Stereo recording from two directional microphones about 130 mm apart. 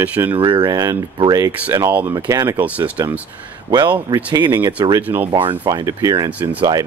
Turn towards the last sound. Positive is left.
turn(degrees=-30)  # may be behind; listen again after turning